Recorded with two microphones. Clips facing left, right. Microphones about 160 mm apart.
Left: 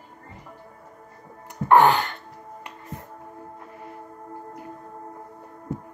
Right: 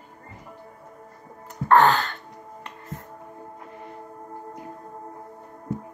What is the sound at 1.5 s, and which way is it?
Music, 15° left (ahead or behind).